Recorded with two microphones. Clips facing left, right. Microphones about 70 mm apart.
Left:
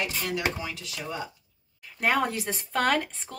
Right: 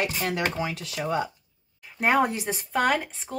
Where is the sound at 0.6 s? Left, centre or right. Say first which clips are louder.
Right 6 dB; right.